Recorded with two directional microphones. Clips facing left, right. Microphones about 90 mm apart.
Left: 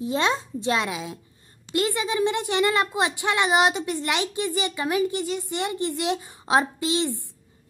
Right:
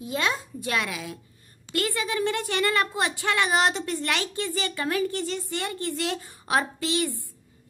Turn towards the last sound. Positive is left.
turn(degrees=20)  # may be behind; listen again after turning